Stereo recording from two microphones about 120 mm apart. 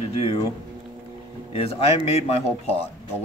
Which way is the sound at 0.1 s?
50° left (ahead or behind).